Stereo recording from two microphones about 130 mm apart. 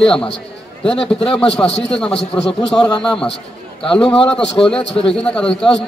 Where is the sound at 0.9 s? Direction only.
45° left (ahead or behind).